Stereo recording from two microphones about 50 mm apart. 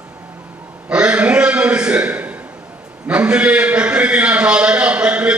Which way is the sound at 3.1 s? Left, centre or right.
Right.